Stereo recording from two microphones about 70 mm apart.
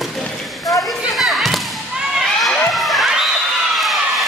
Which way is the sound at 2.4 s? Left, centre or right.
Centre.